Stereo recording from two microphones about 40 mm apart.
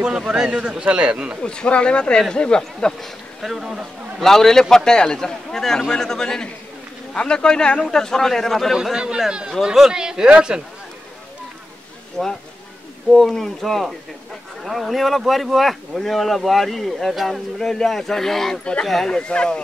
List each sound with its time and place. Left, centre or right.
0.3 s a man's voice: right
1.4 s speech: left
3.0 s speech: centre
4.2 s a man's voice: centre
8.9 s a man's voice: right
12.2 s a man's voice: centre
18.6 s speech: left